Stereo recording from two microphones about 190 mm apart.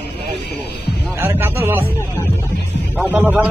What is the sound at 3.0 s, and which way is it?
Speech, 5° right (ahead or behind).